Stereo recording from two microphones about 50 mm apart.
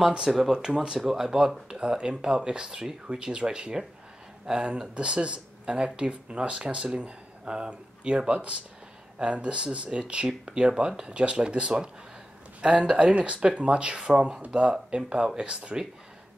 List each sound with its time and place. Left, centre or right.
0.3 s speech: centre